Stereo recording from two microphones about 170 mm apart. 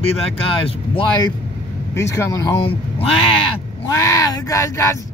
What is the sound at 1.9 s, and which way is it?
Speech, 15° left (ahead or behind).